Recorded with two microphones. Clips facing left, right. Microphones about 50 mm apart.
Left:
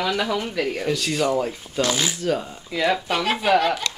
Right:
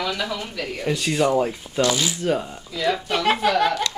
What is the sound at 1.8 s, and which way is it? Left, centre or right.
Speech, left.